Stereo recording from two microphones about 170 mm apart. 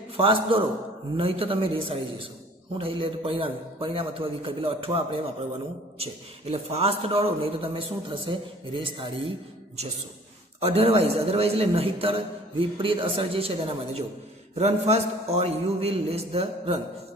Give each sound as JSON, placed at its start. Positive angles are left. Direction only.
{"t": 0.2, "sound": "a man's voice", "side_deg": -30}
{"t": 10.6, "sound": "a man's voice", "side_deg": -35}